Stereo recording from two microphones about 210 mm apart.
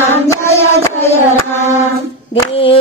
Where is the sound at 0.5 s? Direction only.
10° left (ahead or behind).